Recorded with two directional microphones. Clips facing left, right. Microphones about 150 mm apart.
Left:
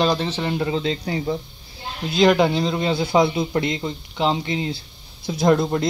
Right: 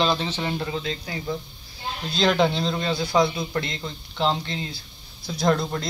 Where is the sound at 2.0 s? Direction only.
15° left (ahead or behind).